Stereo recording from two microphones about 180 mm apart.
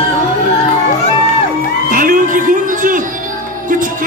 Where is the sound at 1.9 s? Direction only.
50° right (ahead or behind).